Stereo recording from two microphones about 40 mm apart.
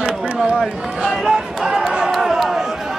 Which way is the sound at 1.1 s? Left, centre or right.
Centre.